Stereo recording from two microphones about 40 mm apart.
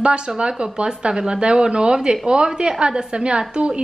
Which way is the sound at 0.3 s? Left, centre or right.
Right.